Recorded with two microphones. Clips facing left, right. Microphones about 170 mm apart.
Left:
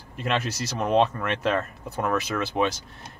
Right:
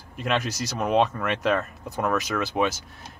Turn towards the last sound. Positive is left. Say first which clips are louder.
# even
turn(degrees=-5)  # may be behind; listen again after turning